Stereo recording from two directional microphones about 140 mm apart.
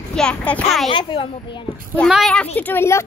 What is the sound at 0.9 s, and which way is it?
Speech, 35° left (ahead or behind).